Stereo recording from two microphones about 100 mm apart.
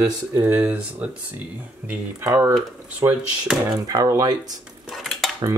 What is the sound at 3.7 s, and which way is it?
Speech, 35° right (ahead or behind).